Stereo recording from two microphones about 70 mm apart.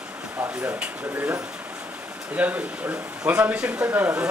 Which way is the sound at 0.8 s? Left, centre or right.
Right.